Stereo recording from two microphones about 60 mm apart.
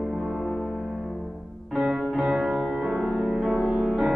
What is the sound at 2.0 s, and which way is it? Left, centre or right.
Music, centre.